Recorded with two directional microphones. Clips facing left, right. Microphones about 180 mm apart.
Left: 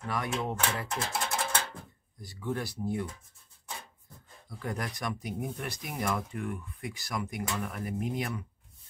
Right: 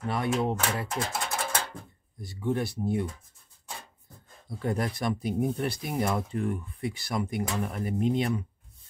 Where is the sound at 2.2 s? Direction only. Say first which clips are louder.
Right 5 dB; 25° right (ahead or behind).